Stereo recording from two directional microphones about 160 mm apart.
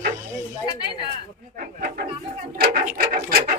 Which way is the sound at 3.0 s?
75° right (ahead or behind).